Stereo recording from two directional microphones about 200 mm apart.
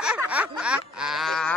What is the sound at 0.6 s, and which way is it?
Quack, 5° right (ahead or behind).